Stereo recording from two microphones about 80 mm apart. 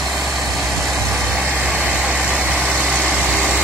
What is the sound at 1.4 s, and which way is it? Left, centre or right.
Vehicle, centre.